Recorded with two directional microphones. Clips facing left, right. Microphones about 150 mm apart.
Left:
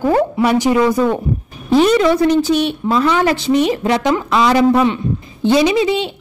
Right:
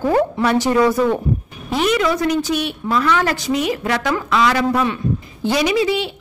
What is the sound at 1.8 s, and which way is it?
A woman's voice, 30° left (ahead or behind).